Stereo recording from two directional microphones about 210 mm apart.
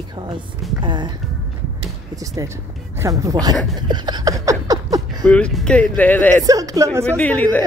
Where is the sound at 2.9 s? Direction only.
15° right (ahead or behind).